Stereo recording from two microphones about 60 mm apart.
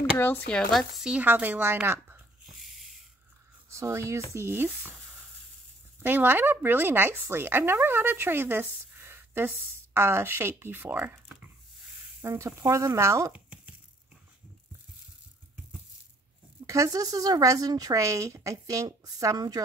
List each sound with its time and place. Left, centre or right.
0.7 s speech: centre
1.2 s speech: right
1.9 s a sound: right
2.4 s a sound: centre
3.7 s speech: right
4.5 s speech: right
6.0 s speech: right
12.4 s speech: right
13.3 s a sound: right
16.6 s a woman's voice: right